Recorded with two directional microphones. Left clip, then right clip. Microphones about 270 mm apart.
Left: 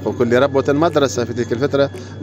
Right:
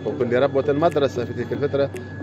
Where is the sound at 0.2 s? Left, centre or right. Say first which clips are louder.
Left 5 dB; left.